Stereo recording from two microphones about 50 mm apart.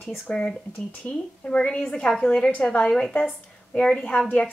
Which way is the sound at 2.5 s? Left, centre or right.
Left.